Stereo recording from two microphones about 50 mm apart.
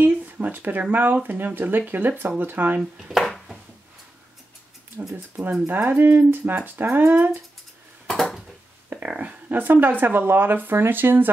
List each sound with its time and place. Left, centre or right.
0.0 s a sound: right
0.9 s speech: right
3.1 s a sound: centre
5.7 s speech: right
8.1 s dishes: centre
9.2 s speech: right